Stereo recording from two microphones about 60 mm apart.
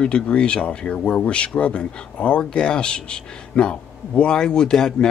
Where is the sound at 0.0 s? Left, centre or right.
Centre.